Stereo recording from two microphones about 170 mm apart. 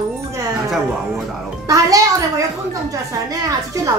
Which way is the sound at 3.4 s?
20° right (ahead or behind).